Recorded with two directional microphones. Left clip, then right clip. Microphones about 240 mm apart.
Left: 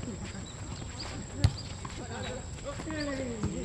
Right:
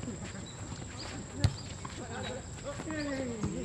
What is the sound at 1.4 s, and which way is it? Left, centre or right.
Clip-clop, centre.